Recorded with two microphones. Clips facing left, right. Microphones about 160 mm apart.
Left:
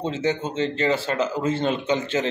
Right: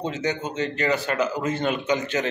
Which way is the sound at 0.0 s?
25° left (ahead or behind).